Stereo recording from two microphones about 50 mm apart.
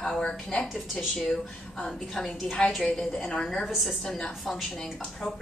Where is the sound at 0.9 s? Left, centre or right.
Centre.